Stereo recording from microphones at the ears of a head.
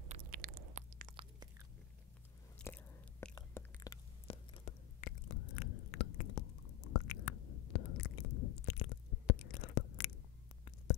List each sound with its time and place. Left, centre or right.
0.1 s chewing: right
3.8 s chewing: left